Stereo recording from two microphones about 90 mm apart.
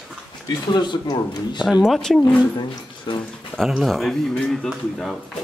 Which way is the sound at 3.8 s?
Centre (ahead or behind).